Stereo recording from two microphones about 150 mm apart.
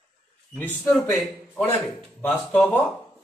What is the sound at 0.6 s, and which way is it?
A man's voice, 10° left (ahead or behind).